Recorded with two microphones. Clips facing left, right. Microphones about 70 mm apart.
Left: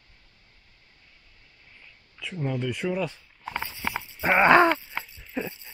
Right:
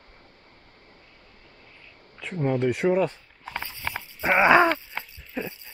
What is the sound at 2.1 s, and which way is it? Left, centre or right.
Speech, right.